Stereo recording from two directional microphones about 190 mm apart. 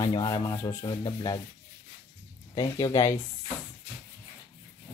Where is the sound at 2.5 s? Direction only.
20° left (ahead or behind).